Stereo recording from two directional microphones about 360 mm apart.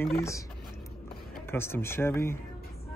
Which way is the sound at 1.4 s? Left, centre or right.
Centre.